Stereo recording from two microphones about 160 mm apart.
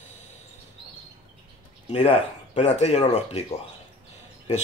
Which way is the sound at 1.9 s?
30° left (ahead or behind).